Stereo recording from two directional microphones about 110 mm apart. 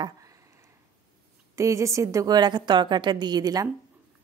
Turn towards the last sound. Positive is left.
turn(degrees=-35)  # may be behind; listen again after turning